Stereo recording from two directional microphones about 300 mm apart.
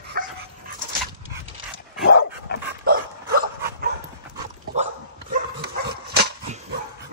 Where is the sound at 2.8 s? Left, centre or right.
Right.